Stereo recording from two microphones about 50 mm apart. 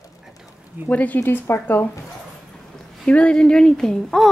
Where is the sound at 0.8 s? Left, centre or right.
Left.